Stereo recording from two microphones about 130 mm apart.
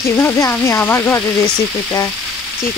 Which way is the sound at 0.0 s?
15° left (ahead or behind).